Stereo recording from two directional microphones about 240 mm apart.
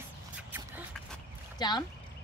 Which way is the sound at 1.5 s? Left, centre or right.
Centre.